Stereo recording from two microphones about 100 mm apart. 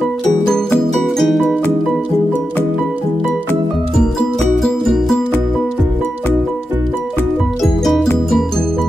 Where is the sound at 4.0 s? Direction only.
5° left (ahead or behind).